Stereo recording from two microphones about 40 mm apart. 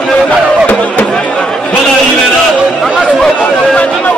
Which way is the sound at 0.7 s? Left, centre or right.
Left.